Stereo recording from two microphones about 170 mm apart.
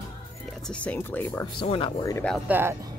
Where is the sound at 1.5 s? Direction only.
30° left (ahead or behind).